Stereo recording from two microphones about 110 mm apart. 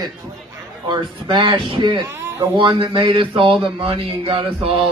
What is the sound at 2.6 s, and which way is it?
A man's voice, 50° right (ahead or behind).